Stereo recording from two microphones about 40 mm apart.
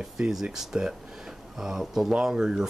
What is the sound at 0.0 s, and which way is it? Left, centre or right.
Speech, centre.